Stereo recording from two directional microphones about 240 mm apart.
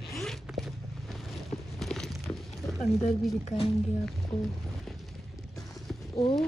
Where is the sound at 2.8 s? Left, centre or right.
Left.